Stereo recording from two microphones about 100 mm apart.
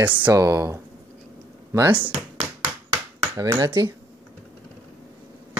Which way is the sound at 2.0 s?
50° right (ahead or behind).